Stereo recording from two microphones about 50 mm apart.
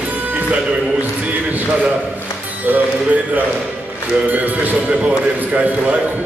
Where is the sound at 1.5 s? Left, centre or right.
Right.